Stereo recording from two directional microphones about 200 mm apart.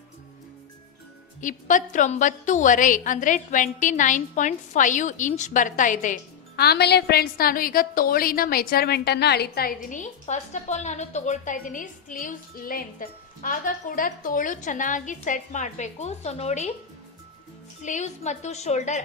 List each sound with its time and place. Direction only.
1.4 s a woman's voice: 40° left (ahead or behind)
17.8 s a woman's voice: 35° left (ahead or behind)